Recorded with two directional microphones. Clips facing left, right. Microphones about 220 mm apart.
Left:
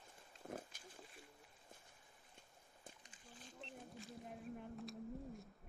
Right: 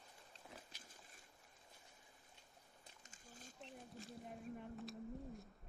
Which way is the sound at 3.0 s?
45° right (ahead or behind).